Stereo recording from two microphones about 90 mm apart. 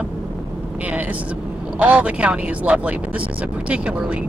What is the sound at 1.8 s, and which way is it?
Speech, 15° right (ahead or behind).